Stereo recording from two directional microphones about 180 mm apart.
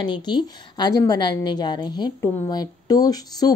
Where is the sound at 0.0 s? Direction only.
25° left (ahead or behind).